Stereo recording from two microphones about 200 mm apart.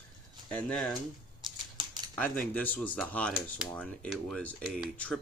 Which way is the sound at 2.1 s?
10° left (ahead or behind).